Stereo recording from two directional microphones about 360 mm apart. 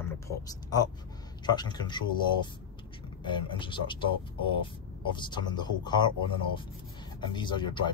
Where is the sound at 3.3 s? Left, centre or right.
Centre.